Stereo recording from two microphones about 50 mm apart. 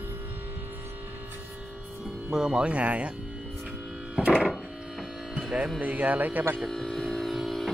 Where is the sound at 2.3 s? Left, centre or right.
Centre.